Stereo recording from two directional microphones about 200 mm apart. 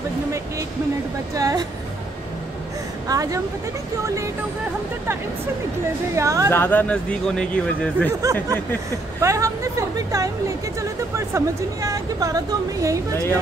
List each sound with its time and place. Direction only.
1.3 s speech: 15° right (ahead or behind)
3.1 s speech: 15° right (ahead or behind)
6.1 s speech: 15° right (ahead or behind)
6.5 s speech: 10° left (ahead or behind)
8.2 s speech: 15° right (ahead or behind)